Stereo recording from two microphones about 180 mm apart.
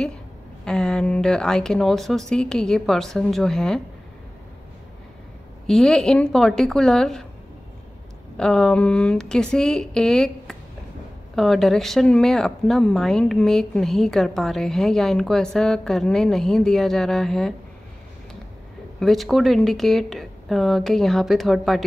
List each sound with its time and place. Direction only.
0.7 s speech: 5° left (ahead or behind)
5.7 s speech: 5° left (ahead or behind)
8.4 s speech: 5° left (ahead or behind)
18.9 s speech: centre (ahead or behind)